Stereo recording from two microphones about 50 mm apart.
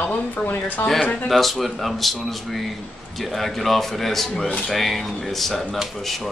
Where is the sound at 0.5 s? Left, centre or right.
Left.